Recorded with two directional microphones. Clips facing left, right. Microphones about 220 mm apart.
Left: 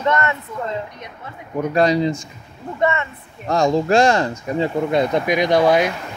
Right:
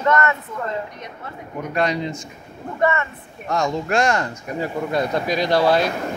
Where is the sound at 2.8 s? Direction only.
25° left (ahead or behind).